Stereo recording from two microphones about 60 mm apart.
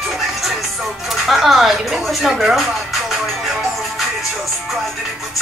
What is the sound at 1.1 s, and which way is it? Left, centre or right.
Speech, centre.